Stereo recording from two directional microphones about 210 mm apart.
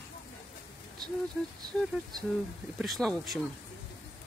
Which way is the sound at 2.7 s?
Centre (ahead or behind).